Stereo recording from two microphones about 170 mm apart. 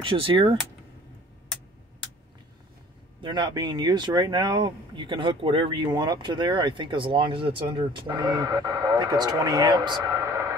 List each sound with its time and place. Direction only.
0.0 s speech: 30° right (ahead or behind)
3.2 s speech: 25° right (ahead or behind)